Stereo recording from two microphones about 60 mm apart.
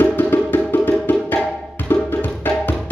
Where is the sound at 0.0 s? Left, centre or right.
Left.